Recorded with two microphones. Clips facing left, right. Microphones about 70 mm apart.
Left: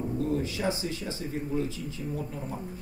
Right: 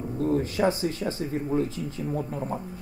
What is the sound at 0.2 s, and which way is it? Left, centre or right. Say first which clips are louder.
Speech: right 8 dB; right.